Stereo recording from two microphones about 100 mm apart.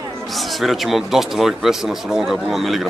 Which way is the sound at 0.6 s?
Centre (ahead or behind).